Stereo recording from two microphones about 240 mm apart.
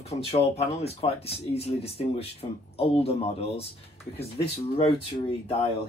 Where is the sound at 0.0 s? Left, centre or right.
Left.